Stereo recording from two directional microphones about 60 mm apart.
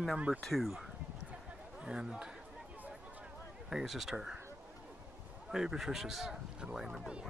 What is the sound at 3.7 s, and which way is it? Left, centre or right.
Speech, centre.